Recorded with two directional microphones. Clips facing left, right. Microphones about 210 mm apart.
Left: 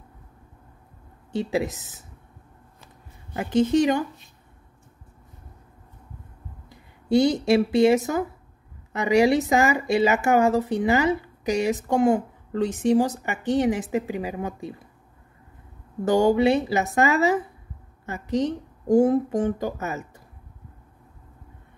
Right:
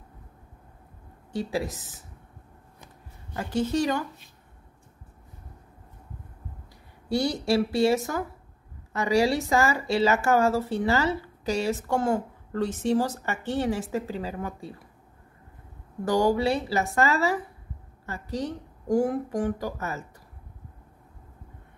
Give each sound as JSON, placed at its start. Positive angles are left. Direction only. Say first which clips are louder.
{"t": 1.3, "sound": "a woman's voice", "louder": "left 4 dB", "side_deg": 20}
{"t": 3.3, "sound": "a woman's voice", "louder": "left 6 dB", "side_deg": 20}
{"t": 6.7, "sound": "speech", "louder": "left 7 dB", "side_deg": 20}
{"t": 16.1, "sound": "a woman's voice", "louder": "left 4 dB", "side_deg": 25}